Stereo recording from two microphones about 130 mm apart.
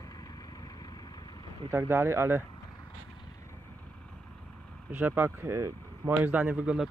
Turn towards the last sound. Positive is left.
turn(degrees=-5)  # may be behind; listen again after turning